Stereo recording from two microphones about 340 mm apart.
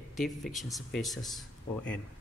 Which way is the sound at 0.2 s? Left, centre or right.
Centre.